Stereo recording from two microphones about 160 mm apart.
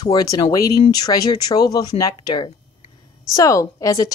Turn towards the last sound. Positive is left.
turn(degrees=20)  # may be behind; listen again after turning